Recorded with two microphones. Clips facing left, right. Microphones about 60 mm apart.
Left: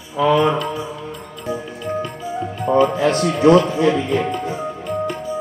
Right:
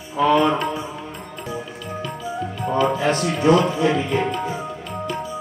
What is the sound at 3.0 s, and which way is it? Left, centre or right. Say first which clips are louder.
Speech: left 4 dB; left.